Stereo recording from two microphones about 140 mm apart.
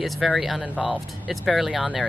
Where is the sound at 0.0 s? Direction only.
Centre (ahead or behind).